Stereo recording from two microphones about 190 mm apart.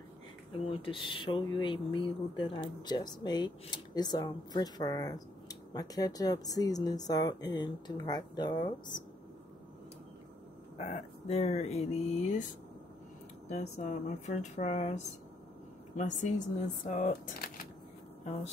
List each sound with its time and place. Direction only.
0.5 s speech: 30° left (ahead or behind)
10.8 s speech: 35° left (ahead or behind)
13.5 s speech: 35° left (ahead or behind)